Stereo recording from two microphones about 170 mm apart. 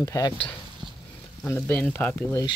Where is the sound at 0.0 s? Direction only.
20° left (ahead or behind).